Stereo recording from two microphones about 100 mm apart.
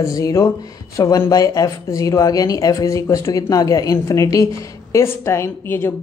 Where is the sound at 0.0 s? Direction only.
35° left (ahead or behind).